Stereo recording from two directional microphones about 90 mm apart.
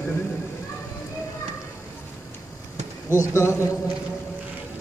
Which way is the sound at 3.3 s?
30° left (ahead or behind).